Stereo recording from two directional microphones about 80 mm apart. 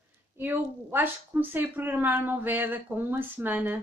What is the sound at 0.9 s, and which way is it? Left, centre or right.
Speech, right.